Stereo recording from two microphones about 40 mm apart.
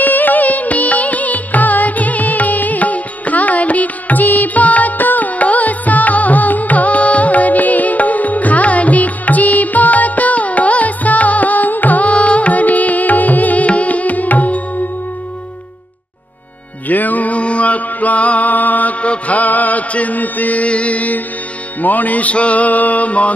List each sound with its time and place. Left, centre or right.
0.0 s music: left
16.8 s music: left